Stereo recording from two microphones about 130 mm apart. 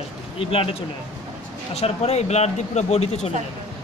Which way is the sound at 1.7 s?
55° left (ahead or behind).